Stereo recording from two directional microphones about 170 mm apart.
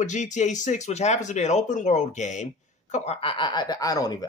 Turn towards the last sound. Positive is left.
turn(degrees=20)  # may be behind; listen again after turning